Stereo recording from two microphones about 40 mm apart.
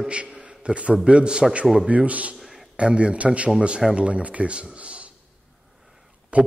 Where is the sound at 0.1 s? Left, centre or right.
Right.